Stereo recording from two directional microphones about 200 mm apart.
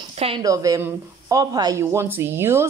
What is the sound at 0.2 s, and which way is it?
A woman's voice, 20° right (ahead or behind).